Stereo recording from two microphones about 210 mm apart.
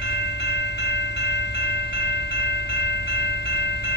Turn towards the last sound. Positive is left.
turn(degrees=55)  # may be behind; listen again after turning